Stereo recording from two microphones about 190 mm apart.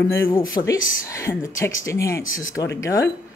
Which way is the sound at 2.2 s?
90° left.